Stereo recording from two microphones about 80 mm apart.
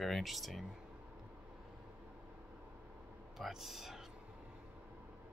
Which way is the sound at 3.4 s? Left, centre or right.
Centre.